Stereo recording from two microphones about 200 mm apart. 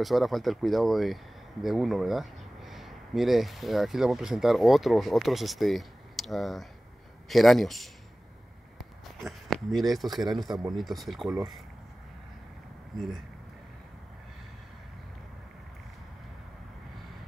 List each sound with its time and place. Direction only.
0.0 s speech: centre (ahead or behind)
9.0 s a sound: centre (ahead or behind)
10.3 s speech: centre (ahead or behind)
12.9 s speech: centre (ahead or behind)